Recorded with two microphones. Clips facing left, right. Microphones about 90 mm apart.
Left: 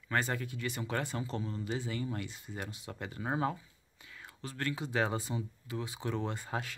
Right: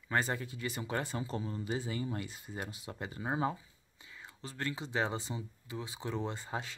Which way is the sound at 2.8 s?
10° right (ahead or behind).